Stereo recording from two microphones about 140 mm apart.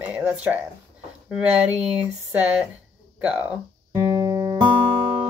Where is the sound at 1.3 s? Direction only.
10° right (ahead or behind).